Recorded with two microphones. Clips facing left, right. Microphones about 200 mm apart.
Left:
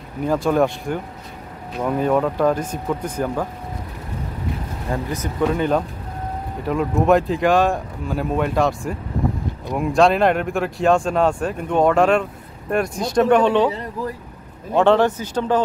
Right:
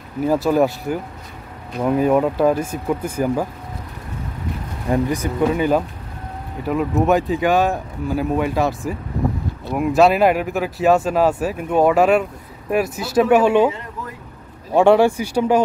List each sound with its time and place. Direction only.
0.2 s speech: 5° right (ahead or behind)
4.9 s speech: 10° right (ahead or behind)
13.7 s a sound: 35° left (ahead or behind)
14.7 s speech: 10° right (ahead or behind)